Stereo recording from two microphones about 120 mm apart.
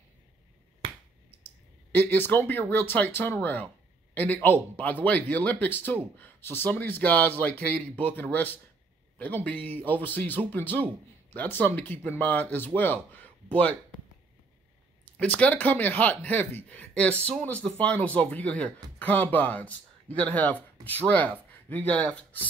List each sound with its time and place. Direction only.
1.9 s speech: 15° left (ahead or behind)
15.1 s speech: 10° left (ahead or behind)